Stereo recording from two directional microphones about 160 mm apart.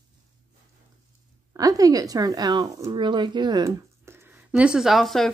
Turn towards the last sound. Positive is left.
turn(degrees=0)  # may be behind; listen again after turning